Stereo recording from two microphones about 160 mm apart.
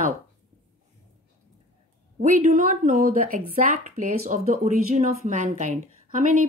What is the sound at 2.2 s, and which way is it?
Speech, 55° right (ahead or behind).